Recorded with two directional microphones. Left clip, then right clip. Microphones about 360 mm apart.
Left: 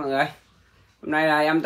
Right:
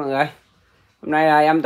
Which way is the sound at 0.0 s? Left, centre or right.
Right.